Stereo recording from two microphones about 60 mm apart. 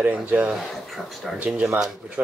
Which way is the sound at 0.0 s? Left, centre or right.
Right.